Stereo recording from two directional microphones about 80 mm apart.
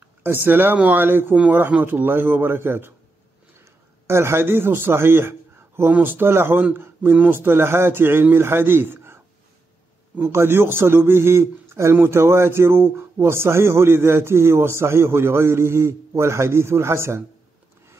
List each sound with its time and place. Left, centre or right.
0.0 s speech: right
1.3 s speech: centre
4.1 s a man's voice: right